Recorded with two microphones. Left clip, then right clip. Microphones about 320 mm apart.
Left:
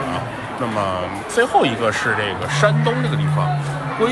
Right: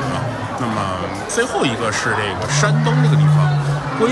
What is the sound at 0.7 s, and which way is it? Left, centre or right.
A man's voice, centre.